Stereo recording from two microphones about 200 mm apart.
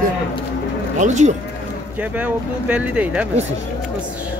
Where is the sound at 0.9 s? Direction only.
35° right (ahead or behind).